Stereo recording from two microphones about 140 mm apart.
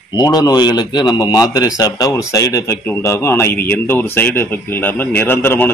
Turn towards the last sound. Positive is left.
turn(degrees=15)  # may be behind; listen again after turning